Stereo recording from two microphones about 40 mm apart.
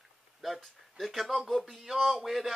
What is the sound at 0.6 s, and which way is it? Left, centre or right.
Speech, centre.